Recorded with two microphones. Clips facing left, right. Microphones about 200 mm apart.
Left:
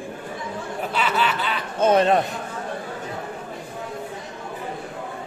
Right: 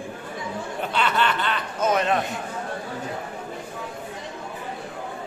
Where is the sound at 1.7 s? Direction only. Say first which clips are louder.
Left 5 dB; 30° left (ahead or behind).